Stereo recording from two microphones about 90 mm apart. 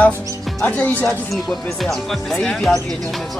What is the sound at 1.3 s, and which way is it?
Speech, centre (ahead or behind).